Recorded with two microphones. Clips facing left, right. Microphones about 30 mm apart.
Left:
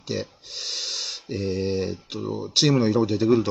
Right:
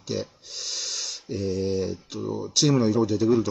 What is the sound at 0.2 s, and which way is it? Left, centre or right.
Speech, left.